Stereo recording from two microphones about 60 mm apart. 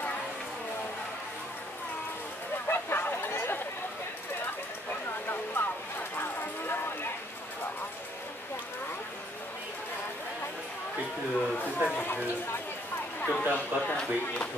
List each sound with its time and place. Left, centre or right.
2.7 s chatter: left
5.5 s vehicle: left
11.3 s speech: left
13.2 s a man's voice: left
13.9 s speech: centre